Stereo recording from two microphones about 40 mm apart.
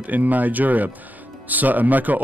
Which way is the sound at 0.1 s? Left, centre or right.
Right.